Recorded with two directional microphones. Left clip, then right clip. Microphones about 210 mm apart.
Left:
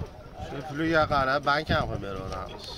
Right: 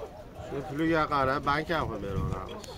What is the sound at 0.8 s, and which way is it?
Speech, 40° left (ahead or behind).